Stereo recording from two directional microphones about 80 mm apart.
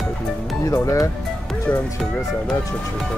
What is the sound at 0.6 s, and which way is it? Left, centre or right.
Speech, left.